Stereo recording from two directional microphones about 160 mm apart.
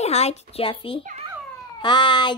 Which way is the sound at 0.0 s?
40° left (ahead or behind).